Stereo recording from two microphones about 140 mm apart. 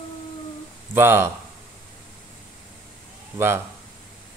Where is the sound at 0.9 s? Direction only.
15° right (ahead or behind).